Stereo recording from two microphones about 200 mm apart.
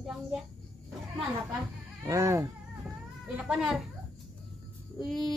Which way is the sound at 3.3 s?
5° right (ahead or behind).